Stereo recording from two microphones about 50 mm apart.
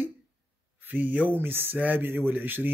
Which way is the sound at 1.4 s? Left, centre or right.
Right.